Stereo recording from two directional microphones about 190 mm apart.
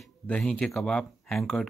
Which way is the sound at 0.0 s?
5° left (ahead or behind).